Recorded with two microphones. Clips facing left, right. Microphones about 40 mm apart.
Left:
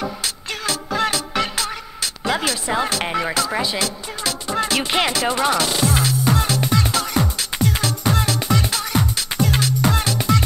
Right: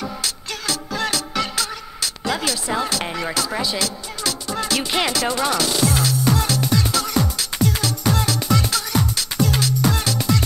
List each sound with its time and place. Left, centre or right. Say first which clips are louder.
0.2 s music: left 1 dB; left